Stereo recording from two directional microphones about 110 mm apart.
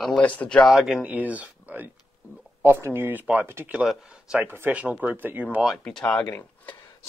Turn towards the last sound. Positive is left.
turn(degrees=15)  # may be behind; listen again after turning